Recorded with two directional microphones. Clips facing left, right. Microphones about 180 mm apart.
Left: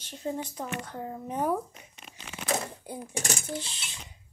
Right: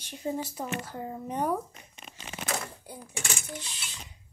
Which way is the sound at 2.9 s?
20° left (ahead or behind).